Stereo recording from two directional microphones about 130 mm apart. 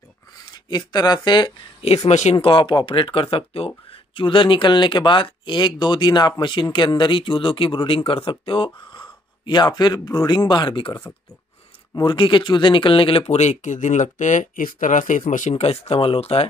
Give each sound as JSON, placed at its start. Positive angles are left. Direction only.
{"t": 0.7, "sound": "speech", "side_deg": 35}
{"t": 2.0, "sound": "speech", "side_deg": 60}
{"t": 2.3, "sound": "speech", "side_deg": 40}
{"t": 11.9, "sound": "speech", "side_deg": 35}